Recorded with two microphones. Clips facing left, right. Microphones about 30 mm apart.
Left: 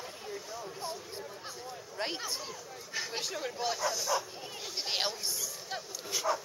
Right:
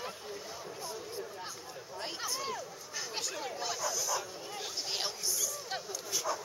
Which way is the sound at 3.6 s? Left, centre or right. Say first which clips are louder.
Left 4 dB; left.